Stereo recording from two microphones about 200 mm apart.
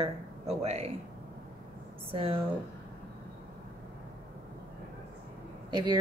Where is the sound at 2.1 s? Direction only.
30° right (ahead or behind).